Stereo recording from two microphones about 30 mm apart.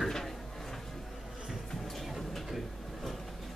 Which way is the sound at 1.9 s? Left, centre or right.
Centre.